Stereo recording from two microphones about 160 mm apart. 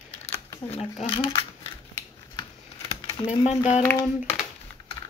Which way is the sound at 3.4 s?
45° left (ahead or behind).